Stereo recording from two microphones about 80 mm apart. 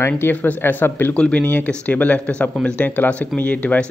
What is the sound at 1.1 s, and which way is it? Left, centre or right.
Speech, centre.